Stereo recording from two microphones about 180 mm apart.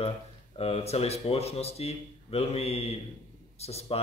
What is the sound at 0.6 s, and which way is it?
Speech, 35° left (ahead or behind).